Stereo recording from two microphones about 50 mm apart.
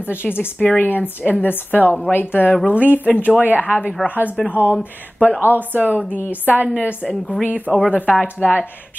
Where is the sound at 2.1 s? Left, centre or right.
Left.